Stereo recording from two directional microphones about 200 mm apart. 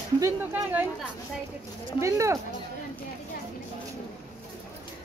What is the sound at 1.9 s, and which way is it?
Speech, 15° right (ahead or behind).